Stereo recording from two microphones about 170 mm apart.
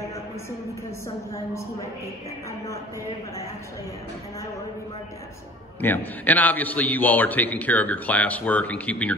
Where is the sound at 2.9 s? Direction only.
20° right (ahead or behind).